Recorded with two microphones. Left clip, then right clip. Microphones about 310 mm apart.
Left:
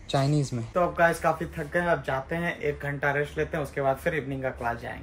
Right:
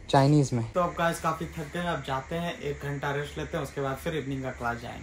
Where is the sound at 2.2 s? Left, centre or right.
Centre.